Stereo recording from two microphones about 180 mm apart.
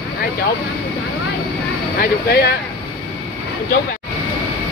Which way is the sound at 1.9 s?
60° left (ahead or behind).